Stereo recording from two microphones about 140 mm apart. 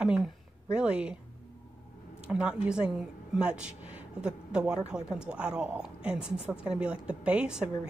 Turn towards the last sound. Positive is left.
turn(degrees=-5)  # may be behind; listen again after turning